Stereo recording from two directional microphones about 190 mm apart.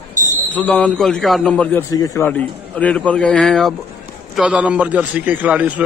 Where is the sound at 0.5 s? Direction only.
10° left (ahead or behind).